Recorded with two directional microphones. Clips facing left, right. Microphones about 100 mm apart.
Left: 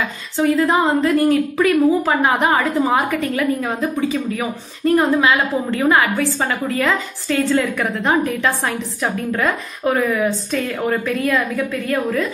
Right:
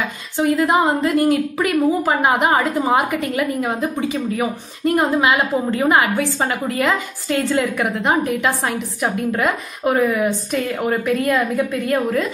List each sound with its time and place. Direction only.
0.4 s a woman's voice: 20° right (ahead or behind)